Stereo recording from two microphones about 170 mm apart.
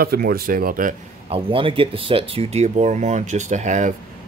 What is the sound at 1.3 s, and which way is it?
Speech, 30° right (ahead or behind).